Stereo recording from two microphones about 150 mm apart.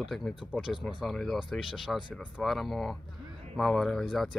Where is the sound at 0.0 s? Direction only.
Centre (ahead or behind).